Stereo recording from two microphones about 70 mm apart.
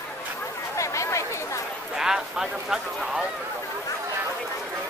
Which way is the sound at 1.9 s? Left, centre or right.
Centre.